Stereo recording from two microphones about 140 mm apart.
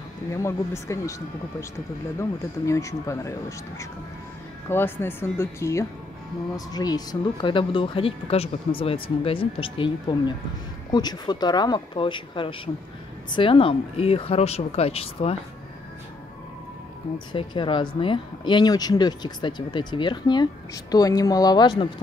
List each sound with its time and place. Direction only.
0.3 s speech: 20° left (ahead or behind)
2.1 s speech: 20° left (ahead or behind); by 15.3 s 45° left (ahead or behind)
17.3 s speech: 35° left (ahead or behind)